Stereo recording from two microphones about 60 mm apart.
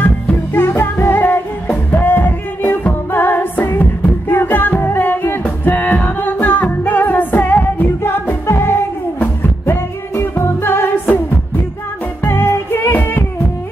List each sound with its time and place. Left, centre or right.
0.0 s music: left
12.3 s music: left
12.9 s music: left